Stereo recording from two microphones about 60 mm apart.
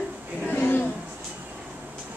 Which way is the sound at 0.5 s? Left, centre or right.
Left.